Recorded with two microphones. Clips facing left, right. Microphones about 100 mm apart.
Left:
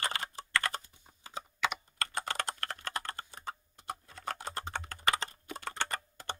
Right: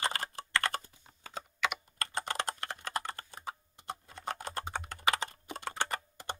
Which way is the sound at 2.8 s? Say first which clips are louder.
Right 2 dB; 10° right (ahead or behind).